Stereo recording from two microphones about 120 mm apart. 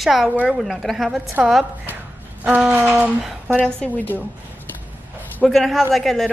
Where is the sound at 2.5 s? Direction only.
10° right (ahead or behind).